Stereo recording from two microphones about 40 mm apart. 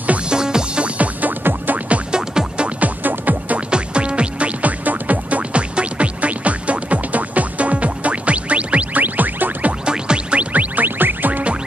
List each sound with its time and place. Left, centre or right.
0.3 s music: centre
0.8 s music: right
1.4 s music: right
2.1 s music: right
2.8 s music: right
3.5 s music: right
9.0 s music: right
9.8 s music: right
10.5 s music: right